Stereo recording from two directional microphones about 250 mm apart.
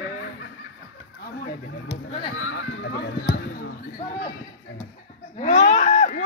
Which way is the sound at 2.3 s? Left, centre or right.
Left.